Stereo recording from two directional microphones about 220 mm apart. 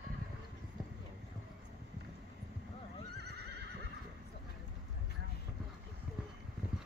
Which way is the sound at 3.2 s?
50° right (ahead or behind).